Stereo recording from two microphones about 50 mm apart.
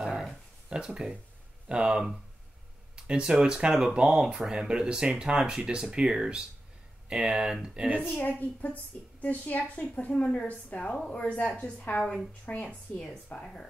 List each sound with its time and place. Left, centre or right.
0.7 s speech: centre
8.3 s a woman's voice: left
9.8 s a woman's voice: left
11.9 s speech: left
12.4 s a woman's voice: left
13.4 s speech: centre